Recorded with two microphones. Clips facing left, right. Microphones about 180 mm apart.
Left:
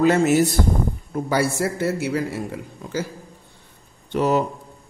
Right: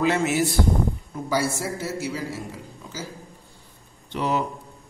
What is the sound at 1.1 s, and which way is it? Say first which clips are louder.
A man's voice: left 5 dB; 60° left (ahead or behind).